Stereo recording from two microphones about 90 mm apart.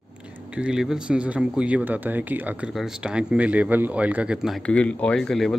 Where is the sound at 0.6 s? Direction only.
5° right (ahead or behind).